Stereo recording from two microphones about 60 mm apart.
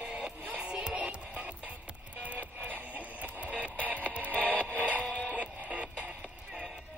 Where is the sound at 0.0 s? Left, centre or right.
Centre.